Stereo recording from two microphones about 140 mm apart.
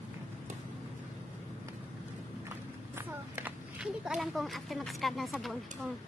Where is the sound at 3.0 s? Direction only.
15° right (ahead or behind).